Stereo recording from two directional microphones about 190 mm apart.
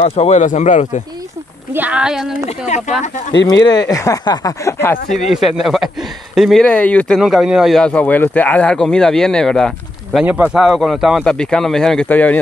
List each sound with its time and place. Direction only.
0.0 s speech: 35° left (ahead or behind)
1.7 s speech: 10° right (ahead or behind)
2.4 s speech: 35° left (ahead or behind)
3.4 s speech: 20° left (ahead or behind)
5.0 s speech: 40° left (ahead or behind)
5.3 s speech: centre (ahead or behind)